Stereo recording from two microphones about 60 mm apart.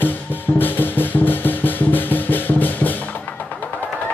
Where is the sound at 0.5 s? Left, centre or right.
Left.